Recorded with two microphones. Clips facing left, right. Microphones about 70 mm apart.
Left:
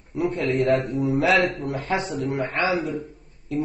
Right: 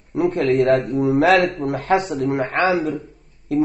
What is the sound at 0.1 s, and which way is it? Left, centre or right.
A man's voice, right.